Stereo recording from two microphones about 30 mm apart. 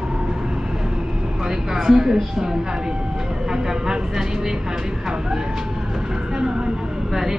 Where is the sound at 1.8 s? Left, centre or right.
Centre.